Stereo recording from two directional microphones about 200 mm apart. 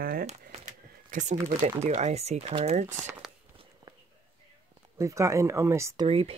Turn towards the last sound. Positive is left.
turn(degrees=-30)  # may be behind; listen again after turning